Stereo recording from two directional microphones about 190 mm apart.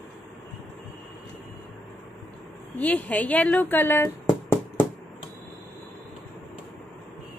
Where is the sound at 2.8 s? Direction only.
10° left (ahead or behind).